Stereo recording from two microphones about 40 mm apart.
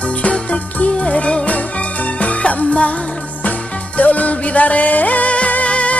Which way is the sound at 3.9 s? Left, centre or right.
Left.